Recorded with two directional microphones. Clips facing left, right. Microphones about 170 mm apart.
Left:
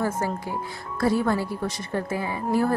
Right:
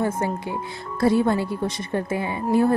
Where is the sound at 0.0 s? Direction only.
20° right (ahead or behind).